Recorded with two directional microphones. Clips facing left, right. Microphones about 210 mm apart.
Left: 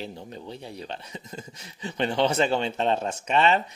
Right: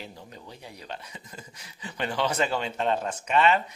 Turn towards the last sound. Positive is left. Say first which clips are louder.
# left 1 dB
turn(degrees=25)  # may be behind; listen again after turning